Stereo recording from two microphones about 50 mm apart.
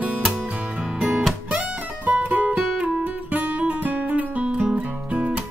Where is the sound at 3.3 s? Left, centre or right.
Right.